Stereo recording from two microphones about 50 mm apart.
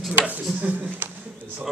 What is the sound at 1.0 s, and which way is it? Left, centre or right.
Speech, right.